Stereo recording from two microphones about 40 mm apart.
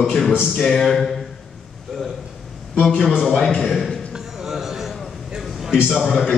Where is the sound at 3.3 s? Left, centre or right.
Centre.